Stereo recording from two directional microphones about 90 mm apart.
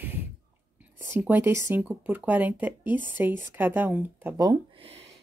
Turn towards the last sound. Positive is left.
turn(degrees=-20)  # may be behind; listen again after turning